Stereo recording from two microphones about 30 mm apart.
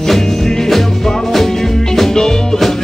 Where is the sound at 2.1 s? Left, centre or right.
Left.